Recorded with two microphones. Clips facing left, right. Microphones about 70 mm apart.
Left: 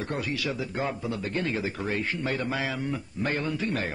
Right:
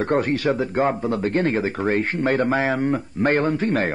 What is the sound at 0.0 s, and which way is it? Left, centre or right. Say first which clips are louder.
A man's voice: right 11 dB; right.